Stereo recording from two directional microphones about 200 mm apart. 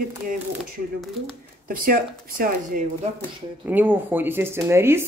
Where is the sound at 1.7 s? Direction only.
45° right (ahead or behind).